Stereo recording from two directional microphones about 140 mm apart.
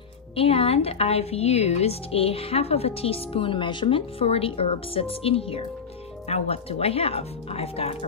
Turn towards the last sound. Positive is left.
turn(degrees=45)  # may be behind; listen again after turning